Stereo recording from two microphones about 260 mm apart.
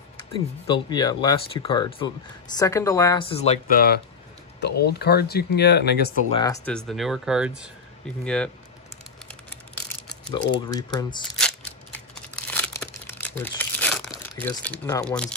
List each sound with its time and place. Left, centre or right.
0.3 s speech: centre; by 6.1 s left
6.3 s speech: centre
10.3 s speech: centre
11.3 s a sound: centre
12.4 s crumpling: centre
14.4 s speech: centre